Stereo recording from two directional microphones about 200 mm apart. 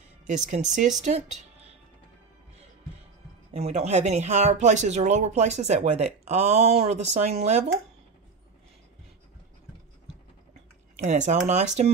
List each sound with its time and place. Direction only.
0.3 s speech: 35° right (ahead or behind)
3.5 s speech: 35° right (ahead or behind)
11.1 s speech: 35° right (ahead or behind)